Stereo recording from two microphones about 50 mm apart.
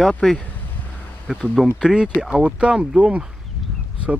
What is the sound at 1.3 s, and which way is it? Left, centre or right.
Speech, centre.